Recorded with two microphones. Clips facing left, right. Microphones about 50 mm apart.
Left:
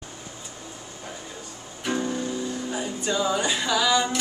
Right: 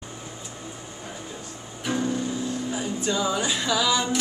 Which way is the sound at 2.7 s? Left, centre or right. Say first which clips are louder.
Even; centre.